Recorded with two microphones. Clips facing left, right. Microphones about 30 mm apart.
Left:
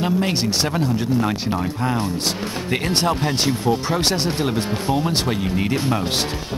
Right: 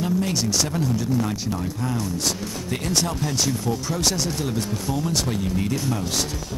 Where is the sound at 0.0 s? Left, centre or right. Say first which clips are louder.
Left 3 dB; left.